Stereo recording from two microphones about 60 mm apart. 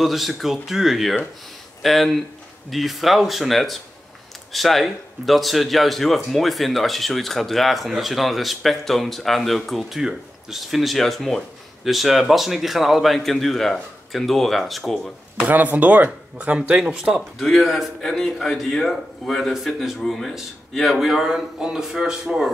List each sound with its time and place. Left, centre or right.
0.0 s speech: centre
15.4 s speech: right; by 17.2 s centre
17.4 s speech: centre